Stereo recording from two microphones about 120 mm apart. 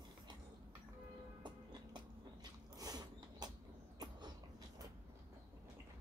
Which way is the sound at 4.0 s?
35° right (ahead or behind).